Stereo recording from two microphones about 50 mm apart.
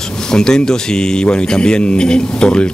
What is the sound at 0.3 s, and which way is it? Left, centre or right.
Speech, centre.